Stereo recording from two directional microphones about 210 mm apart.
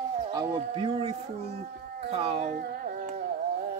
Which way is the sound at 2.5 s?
45° right (ahead or behind).